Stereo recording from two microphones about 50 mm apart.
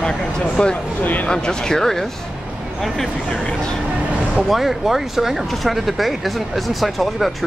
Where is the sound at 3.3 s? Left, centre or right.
Centre.